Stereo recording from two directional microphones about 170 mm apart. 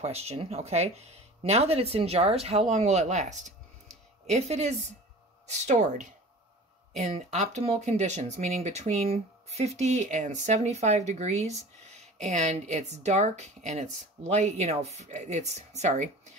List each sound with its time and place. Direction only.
0.0 s speech: 40° right (ahead or behind)